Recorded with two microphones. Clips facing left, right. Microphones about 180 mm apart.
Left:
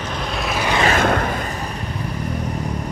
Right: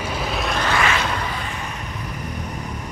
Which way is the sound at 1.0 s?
50° left (ahead or behind).